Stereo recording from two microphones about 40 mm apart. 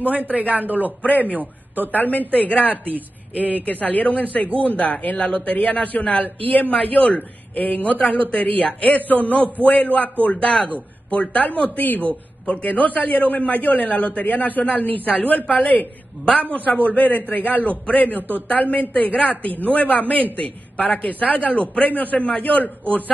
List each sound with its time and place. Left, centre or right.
0.4 s a man's voice: right
2.0 s a woman's voice: left